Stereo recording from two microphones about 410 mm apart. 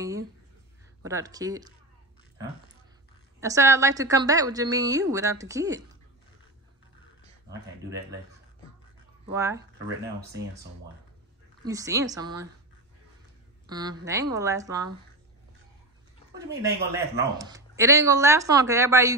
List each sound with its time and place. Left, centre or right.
1.0 s a woman's voice: centre
3.3 s a woman's voice: centre
9.3 s a woman's voice: centre
11.6 s a woman's voice: centre
13.7 s a woman's voice: centre
16.4 s speech: right
17.4 s a woman's voice: centre